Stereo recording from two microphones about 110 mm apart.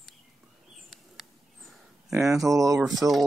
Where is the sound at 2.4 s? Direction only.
30° right (ahead or behind).